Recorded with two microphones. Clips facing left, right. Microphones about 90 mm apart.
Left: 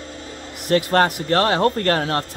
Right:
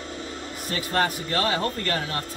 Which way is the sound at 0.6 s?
60° left (ahead or behind).